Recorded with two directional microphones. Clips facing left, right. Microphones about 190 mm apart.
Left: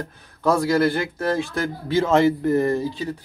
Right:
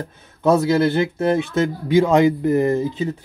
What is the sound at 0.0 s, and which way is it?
Speech, 20° right (ahead or behind).